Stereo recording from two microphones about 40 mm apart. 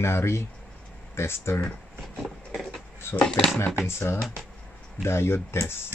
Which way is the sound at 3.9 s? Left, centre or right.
Left.